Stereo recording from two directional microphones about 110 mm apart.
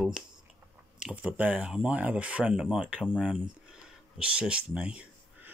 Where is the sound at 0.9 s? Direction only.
10° right (ahead or behind).